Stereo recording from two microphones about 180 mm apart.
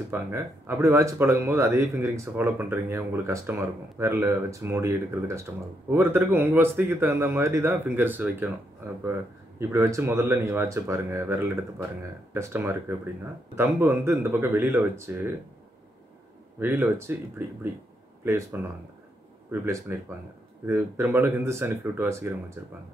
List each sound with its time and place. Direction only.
0.1 s speech: 15° right (ahead or behind)
9.6 s speech: 15° right (ahead or behind)
16.5 s speech: 10° right (ahead or behind)
18.2 s speech: 10° right (ahead or behind)
19.6 s speech: 15° right (ahead or behind)